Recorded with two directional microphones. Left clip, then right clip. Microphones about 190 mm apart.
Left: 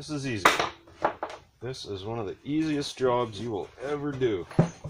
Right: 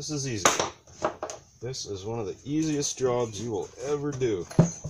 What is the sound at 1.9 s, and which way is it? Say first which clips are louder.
Speech: even; 25° left (ahead or behind).